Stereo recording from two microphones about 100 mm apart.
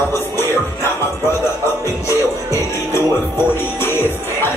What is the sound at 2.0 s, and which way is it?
Music, 30° left (ahead or behind).